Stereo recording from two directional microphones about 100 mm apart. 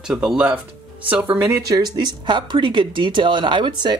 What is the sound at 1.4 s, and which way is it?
Speech, 30° right (ahead or behind).